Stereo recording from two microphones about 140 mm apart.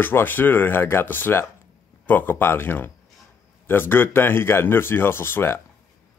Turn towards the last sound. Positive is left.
turn(degrees=15)  # may be behind; listen again after turning